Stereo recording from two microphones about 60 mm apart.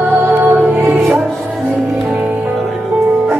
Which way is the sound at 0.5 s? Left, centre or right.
Right.